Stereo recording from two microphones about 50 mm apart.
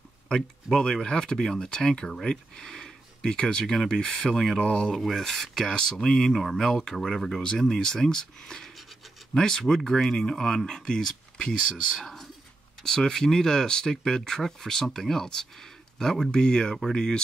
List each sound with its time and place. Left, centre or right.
0.3 s speech: centre
4.3 s speech: centre
4.6 s speech: centre
5.0 s speech: centre